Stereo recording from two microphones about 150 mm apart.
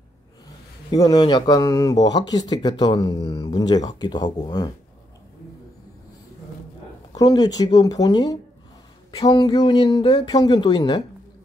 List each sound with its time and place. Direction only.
0.9 s speech: 25° left (ahead or behind)
7.2 s speech: 25° left (ahead or behind)